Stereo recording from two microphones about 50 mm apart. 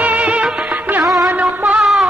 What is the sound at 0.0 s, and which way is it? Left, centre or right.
Music of bollywood, right.